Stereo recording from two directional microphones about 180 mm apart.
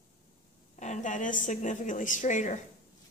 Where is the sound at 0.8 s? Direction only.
40° left (ahead or behind).